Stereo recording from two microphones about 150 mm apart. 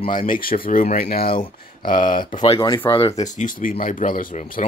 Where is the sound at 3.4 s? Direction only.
65° left (ahead or behind).